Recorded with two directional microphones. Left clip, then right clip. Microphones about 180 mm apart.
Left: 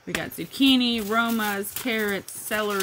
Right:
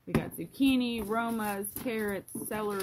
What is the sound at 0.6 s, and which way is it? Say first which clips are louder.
Speech: left 8 dB; 20° left (ahead or behind).